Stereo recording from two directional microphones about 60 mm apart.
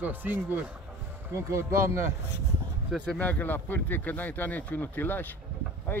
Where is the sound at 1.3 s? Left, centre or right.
Right.